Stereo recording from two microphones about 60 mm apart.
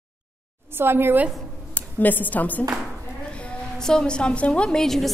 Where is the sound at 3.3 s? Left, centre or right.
Left.